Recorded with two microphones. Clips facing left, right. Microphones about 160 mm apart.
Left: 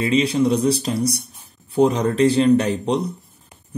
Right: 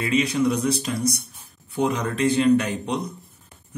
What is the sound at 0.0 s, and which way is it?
Speech, 30° left (ahead or behind).